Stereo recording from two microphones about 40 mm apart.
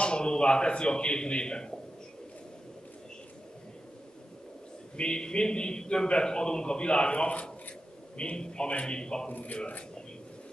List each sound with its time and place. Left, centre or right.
0.0 s a man's voice: left
4.9 s a man's voice: left
8.2 s a man's voice: left
9.3 s a man's voice: left